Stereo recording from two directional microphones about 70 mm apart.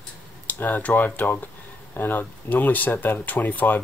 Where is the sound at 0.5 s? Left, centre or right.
Left.